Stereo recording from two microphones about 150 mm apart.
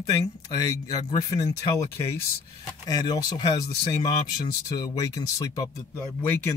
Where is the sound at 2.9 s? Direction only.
25° left (ahead or behind).